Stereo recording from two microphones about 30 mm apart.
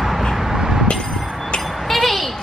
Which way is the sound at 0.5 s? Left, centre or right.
Centre.